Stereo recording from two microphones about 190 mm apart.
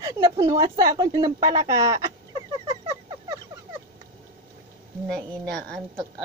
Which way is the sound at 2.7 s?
25° right (ahead or behind).